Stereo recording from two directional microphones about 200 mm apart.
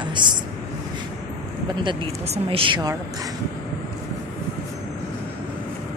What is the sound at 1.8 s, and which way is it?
Speech, 30° right (ahead or behind).